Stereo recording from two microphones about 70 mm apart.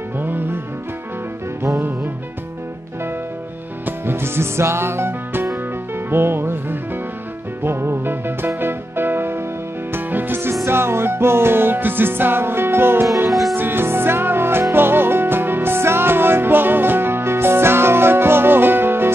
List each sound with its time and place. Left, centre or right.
0.2 s music: right
1.6 s music: right
3.8 s music: right
13.3 s music: centre
13.6 s music: right